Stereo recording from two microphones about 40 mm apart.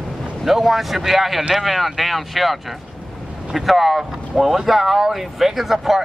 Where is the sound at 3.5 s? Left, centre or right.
Centre.